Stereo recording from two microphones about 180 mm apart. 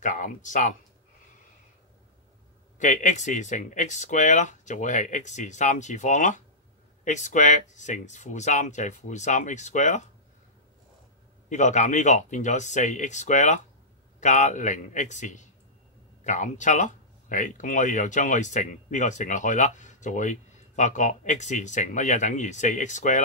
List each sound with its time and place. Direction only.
0.0 s speech: 45° left (ahead or behind)
2.8 s speech: 45° left (ahead or behind)
11.4 s speech: 40° left (ahead or behind)